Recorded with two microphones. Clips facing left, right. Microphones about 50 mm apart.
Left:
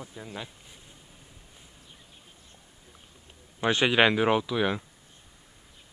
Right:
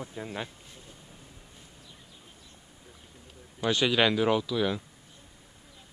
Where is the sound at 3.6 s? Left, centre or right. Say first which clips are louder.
Left 3 dB; left.